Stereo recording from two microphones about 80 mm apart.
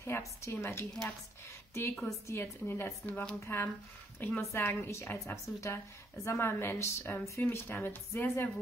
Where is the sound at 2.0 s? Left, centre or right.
Left.